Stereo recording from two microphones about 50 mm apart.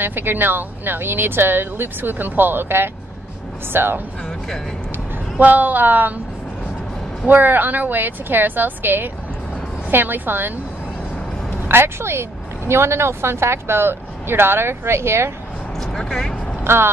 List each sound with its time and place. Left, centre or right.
0.0 s speech: right
7.2 s a woman's voice: right
11.6 s speech: right
15.8 s speech: centre
16.6 s speech: right